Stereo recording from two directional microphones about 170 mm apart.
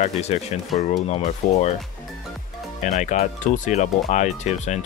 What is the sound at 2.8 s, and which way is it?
Speech, 45° left (ahead or behind).